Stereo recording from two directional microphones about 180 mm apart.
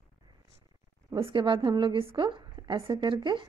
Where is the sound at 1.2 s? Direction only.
25° right (ahead or behind).